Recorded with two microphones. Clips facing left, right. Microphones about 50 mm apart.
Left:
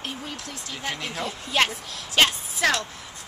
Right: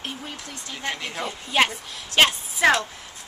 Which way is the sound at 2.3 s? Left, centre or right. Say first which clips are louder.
Right 1 dB; centre.